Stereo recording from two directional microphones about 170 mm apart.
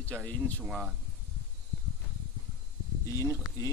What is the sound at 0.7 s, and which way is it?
Speech, 5° right (ahead or behind).